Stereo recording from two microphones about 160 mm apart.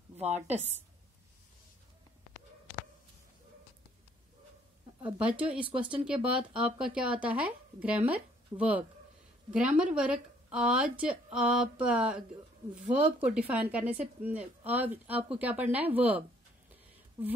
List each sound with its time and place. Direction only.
0.2 s a woman's voice: 45° right (ahead or behind)
5.0 s speech: 10° right (ahead or behind)